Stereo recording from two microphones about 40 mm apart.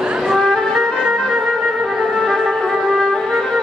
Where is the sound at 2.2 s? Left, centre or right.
Centre.